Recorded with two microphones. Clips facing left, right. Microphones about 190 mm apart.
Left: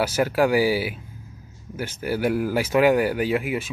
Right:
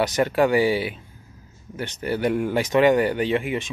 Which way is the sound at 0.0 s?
5° left (ahead or behind).